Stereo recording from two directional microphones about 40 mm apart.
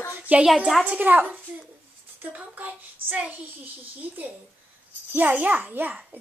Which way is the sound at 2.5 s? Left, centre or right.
Right.